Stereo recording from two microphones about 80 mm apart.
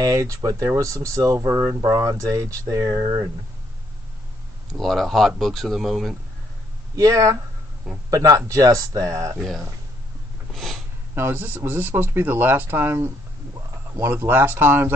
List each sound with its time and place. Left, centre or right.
0.0 s speech: right
4.7 s speech: centre
7.0 s speech: right
10.5 s a sound: centre
11.1 s speech: right